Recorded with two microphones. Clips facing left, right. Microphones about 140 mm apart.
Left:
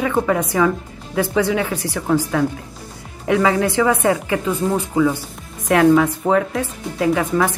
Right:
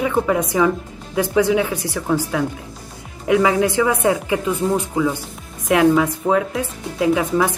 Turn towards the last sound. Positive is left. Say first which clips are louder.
# even
turn(degrees=-15)  # may be behind; listen again after turning